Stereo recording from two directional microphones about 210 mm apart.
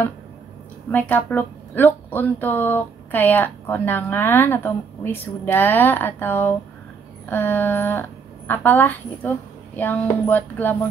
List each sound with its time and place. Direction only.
0.9 s speech: 10° left (ahead or behind)